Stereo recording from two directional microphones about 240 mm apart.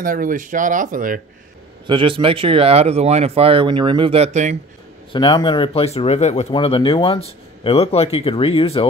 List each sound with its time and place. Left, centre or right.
0.0 s speech: right
1.9 s speech: right
5.1 s speech: centre